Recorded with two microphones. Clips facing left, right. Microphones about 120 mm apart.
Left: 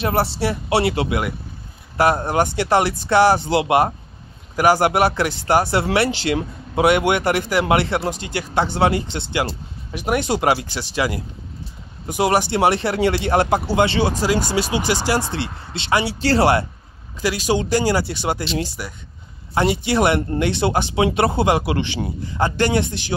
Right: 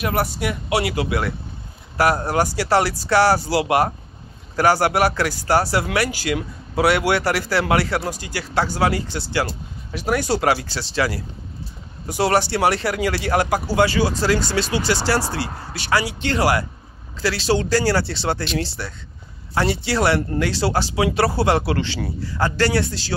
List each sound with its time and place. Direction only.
0.0 s speech: 30° left (ahead or behind)
17.2 s speech: 15° left (ahead or behind)